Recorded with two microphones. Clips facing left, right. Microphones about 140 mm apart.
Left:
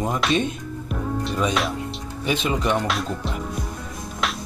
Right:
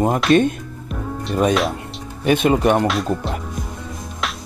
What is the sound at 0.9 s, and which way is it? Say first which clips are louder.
Music: right 1 dB; centre (ahead or behind).